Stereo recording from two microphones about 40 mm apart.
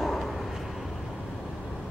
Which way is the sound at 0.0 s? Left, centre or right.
Centre.